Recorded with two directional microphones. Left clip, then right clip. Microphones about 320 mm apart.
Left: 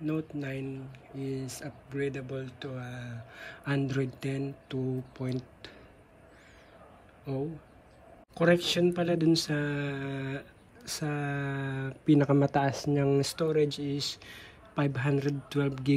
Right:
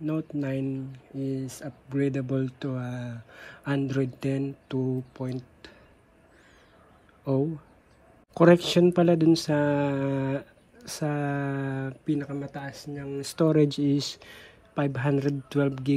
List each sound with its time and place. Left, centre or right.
0.0 s speech: centre
8.4 s speech: centre